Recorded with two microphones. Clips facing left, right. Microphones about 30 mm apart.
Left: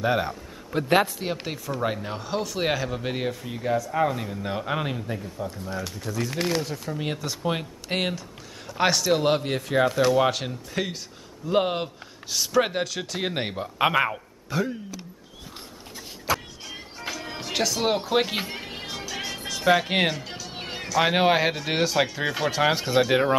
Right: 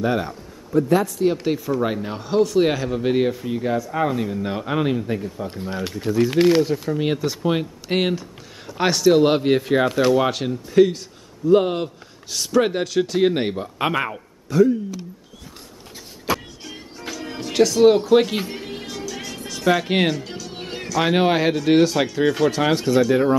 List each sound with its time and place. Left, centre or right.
0.0 s a man's voice: centre
0.7 s a man's voice: left
1.2 s a man's voice: centre
1.5 s speech: centre
5.0 s speech: centre
5.5 s speech: right; by 14.2 s centre
14.5 s a man's voice: centre
16.6 s music: centre
19.4 s speech: centre
22.9 s speech: left